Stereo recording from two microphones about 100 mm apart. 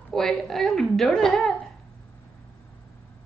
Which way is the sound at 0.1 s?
5° left (ahead or behind).